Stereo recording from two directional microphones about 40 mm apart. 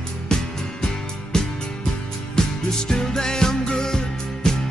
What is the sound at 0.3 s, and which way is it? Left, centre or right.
Music, left.